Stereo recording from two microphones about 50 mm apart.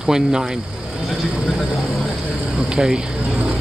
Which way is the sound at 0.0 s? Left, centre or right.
Centre.